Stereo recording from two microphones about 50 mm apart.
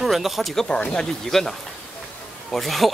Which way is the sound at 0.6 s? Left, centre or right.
Centre.